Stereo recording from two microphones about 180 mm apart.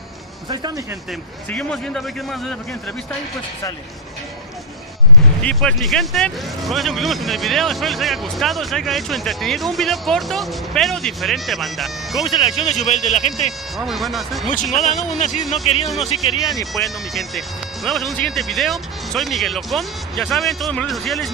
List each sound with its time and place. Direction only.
0.5 s speech: 20° right (ahead or behind)
1.5 s speech: 5° left (ahead or behind)
5.4 s speech: 5° left (ahead or behind)
12.3 s speech: 30° left (ahead or behind)
13.5 s speech: centre (ahead or behind)
14.5 s speech: 45° left (ahead or behind)
16.7 s speech: centre (ahead or behind)